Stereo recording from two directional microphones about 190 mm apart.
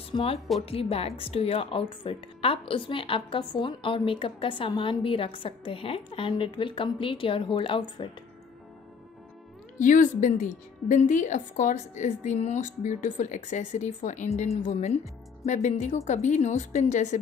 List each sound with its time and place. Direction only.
0.1 s a woman's voice: 30° left (ahead or behind)
9.8 s a woman's voice: 40° left (ahead or behind)